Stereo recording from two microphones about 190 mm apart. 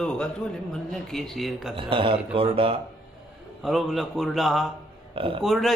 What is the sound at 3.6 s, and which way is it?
A man's voice, centre (ahead or behind).